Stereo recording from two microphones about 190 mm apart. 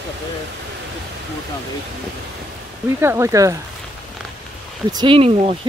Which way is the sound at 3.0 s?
15° right (ahead or behind).